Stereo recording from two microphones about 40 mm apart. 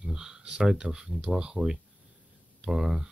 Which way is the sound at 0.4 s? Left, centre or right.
Centre.